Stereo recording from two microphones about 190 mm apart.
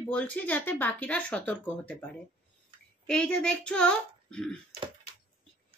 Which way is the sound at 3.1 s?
5° left (ahead or behind).